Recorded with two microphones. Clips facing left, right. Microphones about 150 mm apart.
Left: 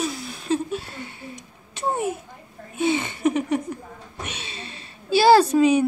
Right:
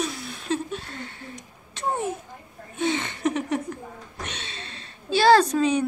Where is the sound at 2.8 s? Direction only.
5° left (ahead or behind).